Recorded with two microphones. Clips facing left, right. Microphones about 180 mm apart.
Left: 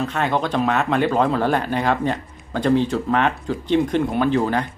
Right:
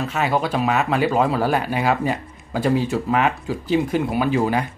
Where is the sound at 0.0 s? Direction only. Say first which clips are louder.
Even; 5° right (ahead or behind).